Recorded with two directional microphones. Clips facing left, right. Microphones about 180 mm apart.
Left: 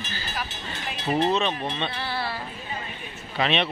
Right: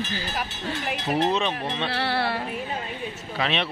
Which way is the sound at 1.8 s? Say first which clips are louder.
Right 5 dB; 70° right (ahead or behind).